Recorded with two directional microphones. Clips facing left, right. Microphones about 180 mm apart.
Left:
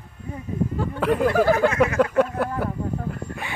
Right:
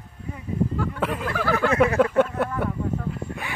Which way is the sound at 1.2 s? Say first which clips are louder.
Left 8 dB; 40° left (ahead or behind).